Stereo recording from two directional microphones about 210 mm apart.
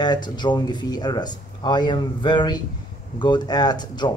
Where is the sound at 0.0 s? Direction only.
20° left (ahead or behind).